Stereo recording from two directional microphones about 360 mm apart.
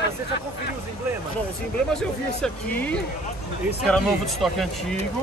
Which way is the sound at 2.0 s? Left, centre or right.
Centre.